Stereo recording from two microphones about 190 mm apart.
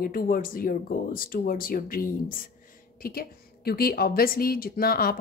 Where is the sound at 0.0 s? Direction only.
50° left (ahead or behind).